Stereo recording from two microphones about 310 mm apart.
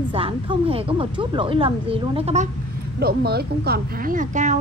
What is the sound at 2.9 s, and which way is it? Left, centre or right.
A woman's voice, right.